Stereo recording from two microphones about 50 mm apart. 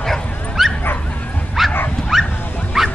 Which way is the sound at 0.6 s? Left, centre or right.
Centre.